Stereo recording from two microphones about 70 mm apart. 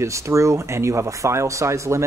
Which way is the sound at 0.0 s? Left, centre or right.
Right.